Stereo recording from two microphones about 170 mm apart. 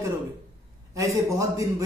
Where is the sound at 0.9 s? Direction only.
20° right (ahead or behind).